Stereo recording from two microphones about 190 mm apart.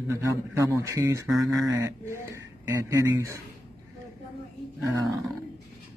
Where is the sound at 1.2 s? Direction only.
Centre (ahead or behind).